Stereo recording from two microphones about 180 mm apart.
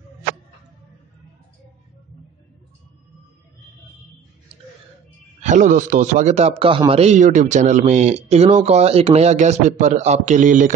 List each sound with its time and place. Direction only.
5.4 s speech: 45° right (ahead or behind)